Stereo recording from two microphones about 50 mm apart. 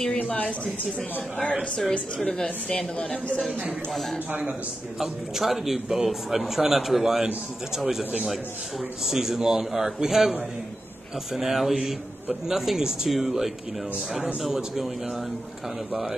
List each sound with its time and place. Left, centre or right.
0.2 s speech: left
1.8 s speech: centre
3.0 s speech: left
4.3 s a man's voice: right
5.0 s a man's voice: centre
8.0 s a man's voice: right
9.0 s a man's voice: centre
11.3 s a man's voice: centre
15.9 s a man's voice: centre